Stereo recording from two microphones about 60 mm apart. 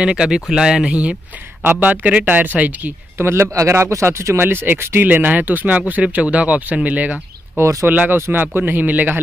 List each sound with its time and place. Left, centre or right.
0.0 s speech: centre
1.6 s speech: right
3.2 s speech: right
4.5 s speech: right
7.6 s speech: right
7.9 s speech: right